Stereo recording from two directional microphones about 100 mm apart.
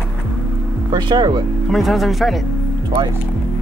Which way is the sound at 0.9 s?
50° right (ahead or behind).